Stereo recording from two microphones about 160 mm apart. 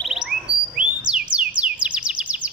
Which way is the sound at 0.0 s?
5° right (ahead or behind).